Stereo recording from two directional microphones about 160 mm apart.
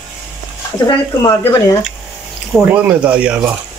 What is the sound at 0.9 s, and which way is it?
Speech, 20° left (ahead or behind).